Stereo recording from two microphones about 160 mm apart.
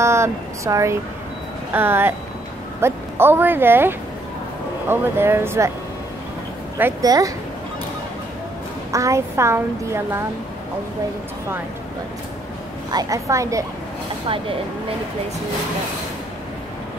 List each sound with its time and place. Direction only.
0.0 s a child's voice: 15° right (ahead or behind)
7.0 s a woman's voice: 20° right (ahead or behind)
8.9 s a child's voice: 20° right (ahead or behind)
12.9 s a woman's voice: 20° right (ahead or behind)